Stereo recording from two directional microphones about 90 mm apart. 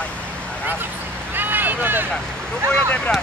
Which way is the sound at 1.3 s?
20° right (ahead or behind).